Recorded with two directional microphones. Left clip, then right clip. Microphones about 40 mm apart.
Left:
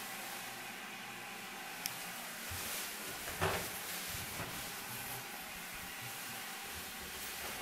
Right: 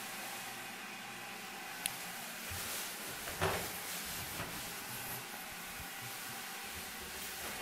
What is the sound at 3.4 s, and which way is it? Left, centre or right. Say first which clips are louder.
Cupboard open or close: even; right.